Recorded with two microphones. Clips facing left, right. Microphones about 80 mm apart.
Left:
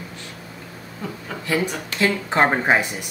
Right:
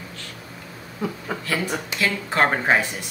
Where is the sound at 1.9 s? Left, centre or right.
Left.